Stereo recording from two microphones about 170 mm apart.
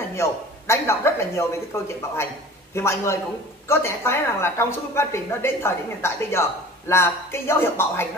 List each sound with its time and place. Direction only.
0.1 s speech: 15° left (ahead or behind)
2.7 s speech: 15° left (ahead or behind)